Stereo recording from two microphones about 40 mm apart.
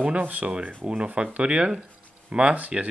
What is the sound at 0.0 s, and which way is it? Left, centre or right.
Rub, right.